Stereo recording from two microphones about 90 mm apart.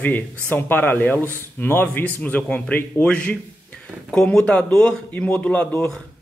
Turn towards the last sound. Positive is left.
turn(degrees=15)  # may be behind; listen again after turning